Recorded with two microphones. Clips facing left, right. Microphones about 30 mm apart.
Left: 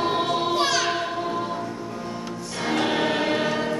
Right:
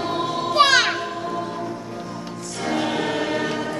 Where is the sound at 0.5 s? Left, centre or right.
Right.